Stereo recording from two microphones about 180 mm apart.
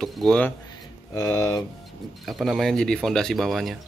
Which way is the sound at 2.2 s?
Centre (ahead or behind).